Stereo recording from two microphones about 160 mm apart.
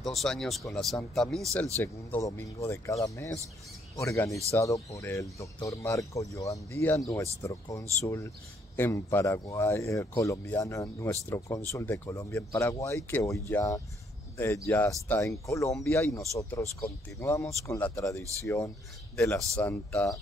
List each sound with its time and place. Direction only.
0.0 s speech: centre (ahead or behind)
1.8 s speech: 15° left (ahead or behind)